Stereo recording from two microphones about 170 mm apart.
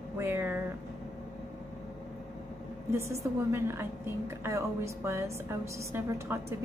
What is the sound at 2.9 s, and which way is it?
A woman's voice, 15° right (ahead or behind).